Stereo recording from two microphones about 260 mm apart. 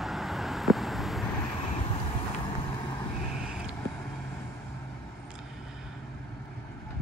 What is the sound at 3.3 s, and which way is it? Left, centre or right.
Vehicle, centre.